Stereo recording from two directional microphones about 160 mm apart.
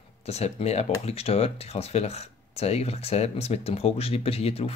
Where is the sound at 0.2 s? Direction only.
40° left (ahead or behind).